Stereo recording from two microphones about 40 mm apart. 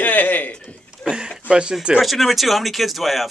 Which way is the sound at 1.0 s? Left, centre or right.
Right.